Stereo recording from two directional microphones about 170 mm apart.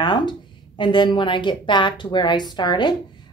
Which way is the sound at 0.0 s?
25° left (ahead or behind).